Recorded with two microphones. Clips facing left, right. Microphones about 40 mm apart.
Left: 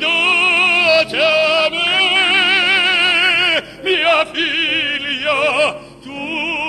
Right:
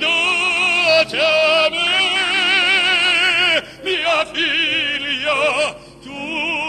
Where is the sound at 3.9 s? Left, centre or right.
Centre.